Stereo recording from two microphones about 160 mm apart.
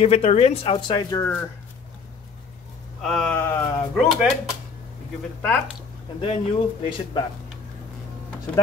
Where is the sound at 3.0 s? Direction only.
5° left (ahead or behind).